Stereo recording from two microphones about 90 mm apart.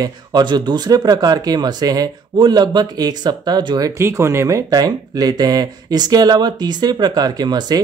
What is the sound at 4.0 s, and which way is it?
Speech, 30° right (ahead or behind).